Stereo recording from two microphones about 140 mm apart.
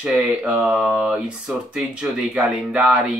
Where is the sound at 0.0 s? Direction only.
5° right (ahead or behind).